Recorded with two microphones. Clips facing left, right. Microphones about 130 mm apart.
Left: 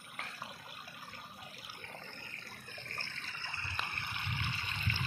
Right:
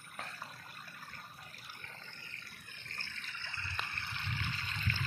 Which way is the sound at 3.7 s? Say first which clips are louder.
Left 1 dB; 30° left (ahead or behind).